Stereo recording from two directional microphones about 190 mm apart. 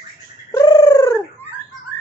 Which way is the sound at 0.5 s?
20° left (ahead or behind).